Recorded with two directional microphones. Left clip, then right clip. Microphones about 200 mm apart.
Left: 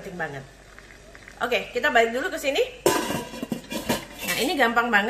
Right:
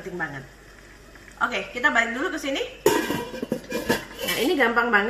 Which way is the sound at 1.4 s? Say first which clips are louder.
Even; 35° left (ahead or behind).